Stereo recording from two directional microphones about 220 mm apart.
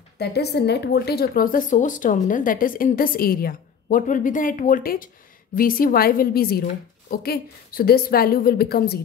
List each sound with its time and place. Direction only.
0.2 s a woman's voice: 50° left (ahead or behind)